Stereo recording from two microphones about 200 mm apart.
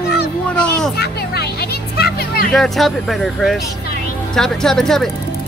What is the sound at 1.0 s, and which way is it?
Music, 55° left (ahead or behind).